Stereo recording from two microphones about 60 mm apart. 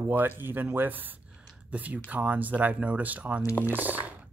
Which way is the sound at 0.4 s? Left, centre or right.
Right.